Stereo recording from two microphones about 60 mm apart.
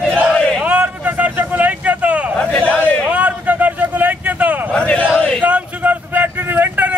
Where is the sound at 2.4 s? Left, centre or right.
Centre.